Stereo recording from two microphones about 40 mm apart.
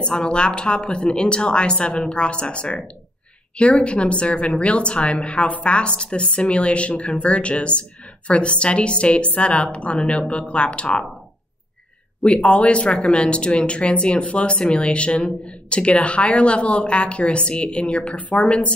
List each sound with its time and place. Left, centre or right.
0.0 s speech: left
12.4 s speech: left